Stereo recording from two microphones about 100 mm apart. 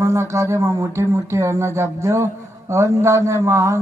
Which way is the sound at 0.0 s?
30° right (ahead or behind).